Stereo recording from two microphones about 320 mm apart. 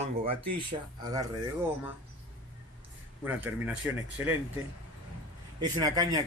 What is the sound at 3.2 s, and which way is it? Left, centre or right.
A man's voice, centre.